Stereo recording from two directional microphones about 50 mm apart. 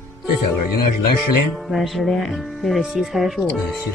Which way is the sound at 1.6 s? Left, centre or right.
Centre.